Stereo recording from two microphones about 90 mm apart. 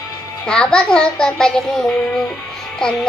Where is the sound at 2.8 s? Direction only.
10° left (ahead or behind).